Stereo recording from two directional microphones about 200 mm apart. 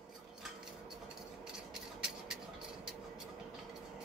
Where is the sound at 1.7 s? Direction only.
Centre (ahead or behind).